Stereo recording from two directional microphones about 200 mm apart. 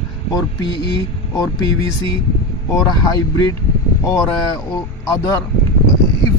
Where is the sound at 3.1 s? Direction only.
15° left (ahead or behind).